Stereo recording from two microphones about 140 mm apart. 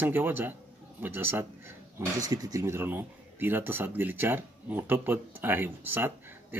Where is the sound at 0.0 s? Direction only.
15° right (ahead or behind).